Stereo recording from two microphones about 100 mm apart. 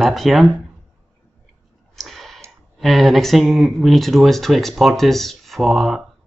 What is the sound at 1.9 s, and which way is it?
Clicking, centre (ahead or behind).